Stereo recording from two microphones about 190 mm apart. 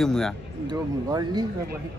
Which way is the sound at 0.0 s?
Centre (ahead or behind).